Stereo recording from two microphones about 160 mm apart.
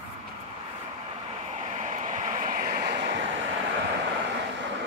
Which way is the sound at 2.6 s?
65° right (ahead or behind).